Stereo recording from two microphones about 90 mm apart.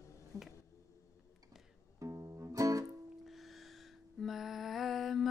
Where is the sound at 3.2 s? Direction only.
Centre (ahead or behind).